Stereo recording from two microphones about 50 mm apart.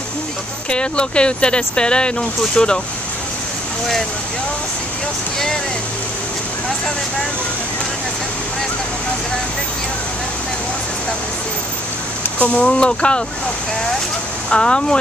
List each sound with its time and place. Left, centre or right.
0.7 s speech: centre
12.5 s speech: left
14.5 s speech: centre